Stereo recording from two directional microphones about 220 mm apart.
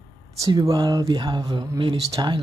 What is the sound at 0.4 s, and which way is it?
Speech, 20° right (ahead or behind).